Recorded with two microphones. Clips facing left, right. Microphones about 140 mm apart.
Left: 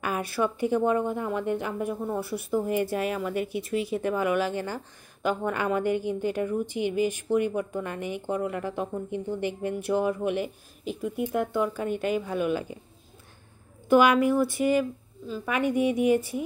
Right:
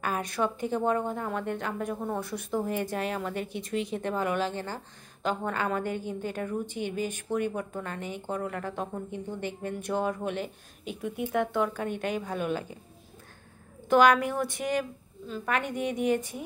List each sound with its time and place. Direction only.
0.0 s a woman's voice: 10° left (ahead or behind)
13.8 s a woman's voice: 5° left (ahead or behind)